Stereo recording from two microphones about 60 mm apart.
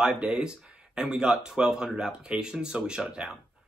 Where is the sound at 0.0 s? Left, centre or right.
Centre.